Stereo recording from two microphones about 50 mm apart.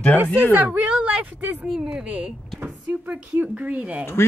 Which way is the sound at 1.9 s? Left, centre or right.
Right.